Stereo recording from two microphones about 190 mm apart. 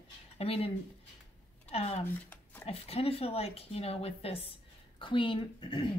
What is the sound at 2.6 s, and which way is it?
A woman's voice, 30° left (ahead or behind).